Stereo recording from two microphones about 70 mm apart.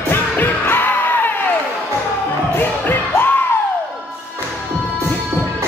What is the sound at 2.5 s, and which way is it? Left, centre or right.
Music, left.